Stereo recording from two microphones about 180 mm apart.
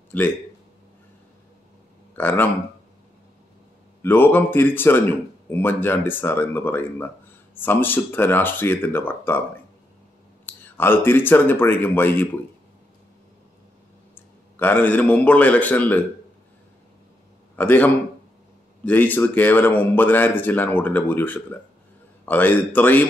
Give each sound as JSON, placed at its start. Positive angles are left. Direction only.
{"t": 2.1, "sound": "speech", "side_deg": 10}
{"t": 4.0, "sound": "speech", "side_deg": 10}
{"t": 10.4, "sound": "speech", "side_deg": 10}
{"t": 14.1, "sound": "a man's voice", "side_deg": 10}
{"t": 17.6, "sound": "speech", "side_deg": 10}